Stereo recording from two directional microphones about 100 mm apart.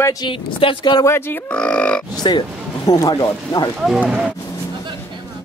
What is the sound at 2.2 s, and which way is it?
Speech, 45° left (ahead or behind).